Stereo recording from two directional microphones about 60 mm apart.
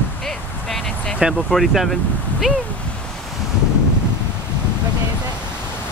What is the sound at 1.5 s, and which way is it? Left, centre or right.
Speech, centre.